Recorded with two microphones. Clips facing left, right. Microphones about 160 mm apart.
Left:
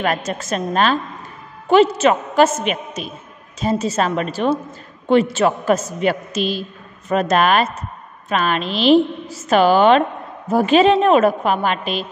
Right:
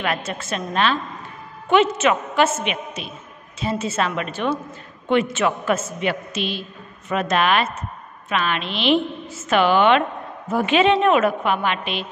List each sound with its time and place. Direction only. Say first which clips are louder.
0.0 s a woman's voice: left 4 dB; 40° left (ahead or behind)